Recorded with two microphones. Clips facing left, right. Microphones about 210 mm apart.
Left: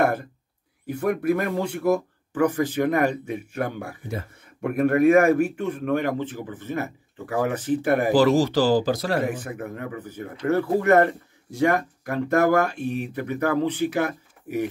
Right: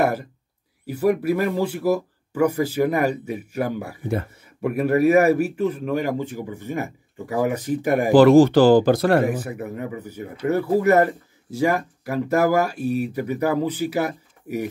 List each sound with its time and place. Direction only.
0.8 s speech: 5° right (ahead or behind)
8.1 s speech: 55° right (ahead or behind)
9.4 s speech: 10° right (ahead or behind)